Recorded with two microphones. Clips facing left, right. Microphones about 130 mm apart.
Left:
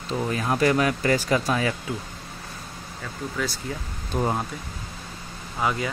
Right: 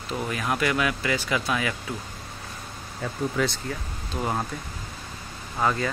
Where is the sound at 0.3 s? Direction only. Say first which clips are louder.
Left 4 dB; 30° left (ahead or behind).